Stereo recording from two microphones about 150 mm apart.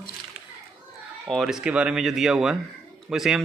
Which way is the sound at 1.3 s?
Centre (ahead or behind).